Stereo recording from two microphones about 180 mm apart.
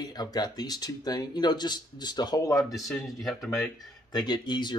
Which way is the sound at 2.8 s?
Centre (ahead or behind).